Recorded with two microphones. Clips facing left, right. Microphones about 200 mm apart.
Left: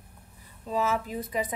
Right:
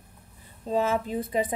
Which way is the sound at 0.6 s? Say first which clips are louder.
Right 3 dB; 30° right (ahead or behind).